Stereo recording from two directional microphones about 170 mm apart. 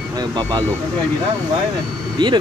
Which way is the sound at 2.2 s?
30° right (ahead or behind).